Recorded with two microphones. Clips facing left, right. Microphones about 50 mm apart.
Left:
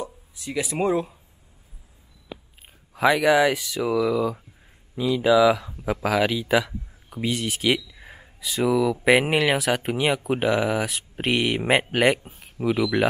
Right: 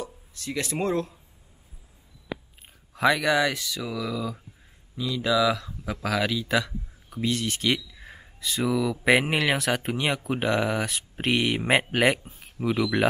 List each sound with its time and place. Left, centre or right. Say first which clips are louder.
0.0 s speech: left 2 dB; centre
2.9 s speech: left 4 dB; centre